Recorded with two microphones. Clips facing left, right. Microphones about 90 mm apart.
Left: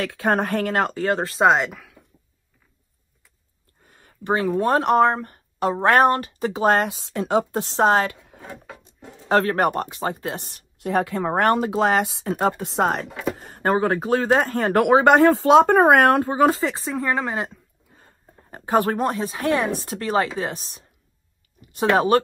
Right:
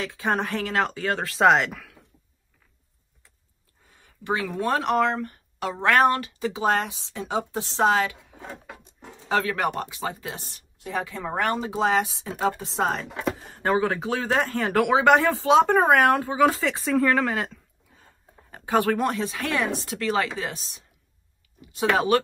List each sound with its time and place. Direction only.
0.0 s speech: 60° left (ahead or behind); by 1.1 s 45° left (ahead or behind)
1.1 s speech: 25° left (ahead or behind)
3.8 s a sound: 60° left (ahead or behind)
4.2 s speech: 40° left (ahead or behind); by 12.4 s 55° left (ahead or behind)
12.6 s chopping: 55° left (ahead or behind)
13.4 s speech: 50° left (ahead or behind)
16.4 s speech: 30° left (ahead or behind)
16.9 s speech: 20° left (ahead or behind)
18.5 s speech: 35° left (ahead or behind)